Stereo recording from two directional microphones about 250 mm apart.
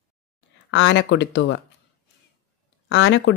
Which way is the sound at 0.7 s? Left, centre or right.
Left.